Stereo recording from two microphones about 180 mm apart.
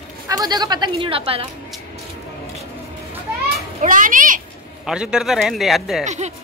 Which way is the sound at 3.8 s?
45° right (ahead or behind).